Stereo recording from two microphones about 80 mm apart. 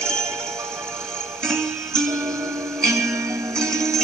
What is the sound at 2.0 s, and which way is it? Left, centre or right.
Music, right.